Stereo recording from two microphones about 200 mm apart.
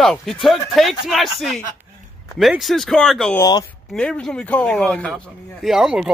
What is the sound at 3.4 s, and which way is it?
Speech, 20° left (ahead or behind).